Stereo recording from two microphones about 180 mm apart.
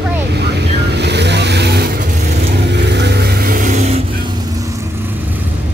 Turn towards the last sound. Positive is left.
turn(degrees=-40)  # may be behind; listen again after turning